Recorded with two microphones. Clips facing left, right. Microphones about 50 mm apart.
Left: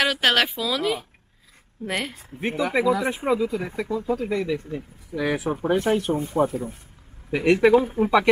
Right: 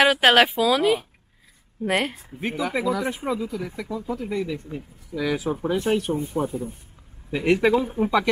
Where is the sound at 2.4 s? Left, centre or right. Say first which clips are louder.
Left 3 dB; centre.